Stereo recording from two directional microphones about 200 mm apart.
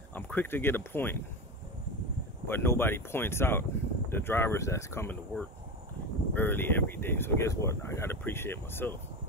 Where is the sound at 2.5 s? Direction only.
10° left (ahead or behind).